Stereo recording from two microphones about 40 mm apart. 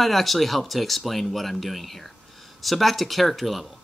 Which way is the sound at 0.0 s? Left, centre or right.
Centre.